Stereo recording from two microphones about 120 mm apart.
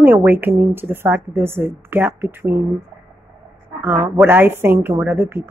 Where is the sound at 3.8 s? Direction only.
15° right (ahead or behind).